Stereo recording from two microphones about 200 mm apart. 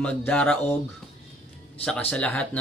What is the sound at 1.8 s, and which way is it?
Speech, 5° left (ahead or behind).